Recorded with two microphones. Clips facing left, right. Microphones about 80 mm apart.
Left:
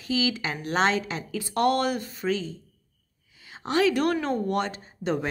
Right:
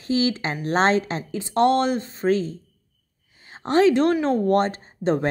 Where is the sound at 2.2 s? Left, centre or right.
Right.